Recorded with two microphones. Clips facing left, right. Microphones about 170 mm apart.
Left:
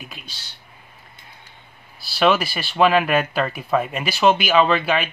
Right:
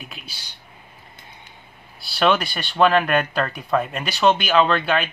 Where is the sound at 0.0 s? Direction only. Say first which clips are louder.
Even; 5° right (ahead or behind).